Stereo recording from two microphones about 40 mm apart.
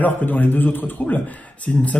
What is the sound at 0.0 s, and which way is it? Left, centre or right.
A man's voice, left.